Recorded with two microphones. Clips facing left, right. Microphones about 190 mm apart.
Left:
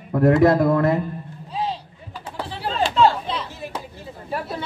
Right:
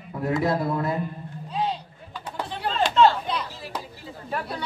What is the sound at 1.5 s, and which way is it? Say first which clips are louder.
Vehicle: left 1 dB; 5° left (ahead or behind).